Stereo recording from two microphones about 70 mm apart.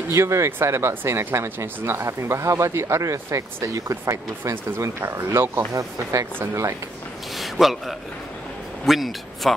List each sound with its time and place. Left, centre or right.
0.1 s speech: right
5.7 s speech: right
7.3 s a sound: centre
8.8 s a man's voice: centre